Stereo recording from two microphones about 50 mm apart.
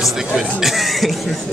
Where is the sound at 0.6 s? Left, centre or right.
Centre.